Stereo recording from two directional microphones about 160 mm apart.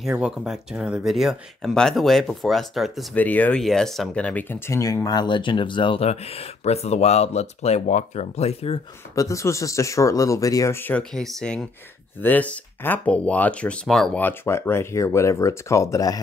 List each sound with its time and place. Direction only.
0.0 s speech: 5° right (ahead or behind)
3.2 s speech: 10° left (ahead or behind); by 8.8 s 40° left (ahead or behind)
9.1 s speech: 20° left (ahead or behind)